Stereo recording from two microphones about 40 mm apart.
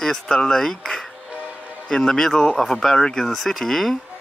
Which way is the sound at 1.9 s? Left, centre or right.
Centre.